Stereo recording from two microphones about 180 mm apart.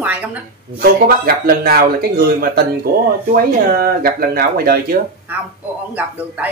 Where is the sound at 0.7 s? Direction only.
60° right (ahead or behind).